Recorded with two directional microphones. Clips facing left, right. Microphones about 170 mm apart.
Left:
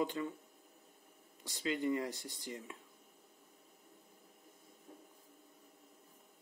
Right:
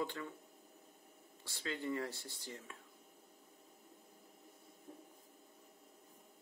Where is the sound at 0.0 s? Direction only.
15° left (ahead or behind).